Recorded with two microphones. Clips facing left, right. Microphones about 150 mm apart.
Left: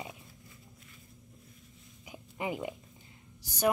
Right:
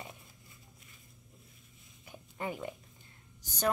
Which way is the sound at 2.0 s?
15° left (ahead or behind).